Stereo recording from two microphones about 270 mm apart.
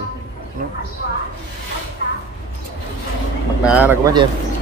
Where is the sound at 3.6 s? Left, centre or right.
Centre.